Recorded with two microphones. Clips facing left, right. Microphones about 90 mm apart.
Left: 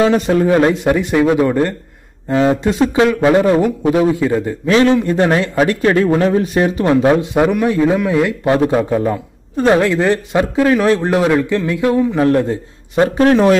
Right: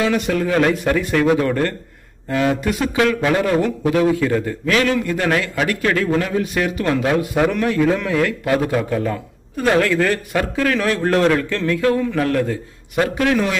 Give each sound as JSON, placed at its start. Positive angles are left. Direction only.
{"t": 0.0, "sound": "a man's voice", "side_deg": 30}